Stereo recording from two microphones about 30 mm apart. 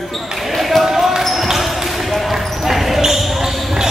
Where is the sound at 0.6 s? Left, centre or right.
Centre.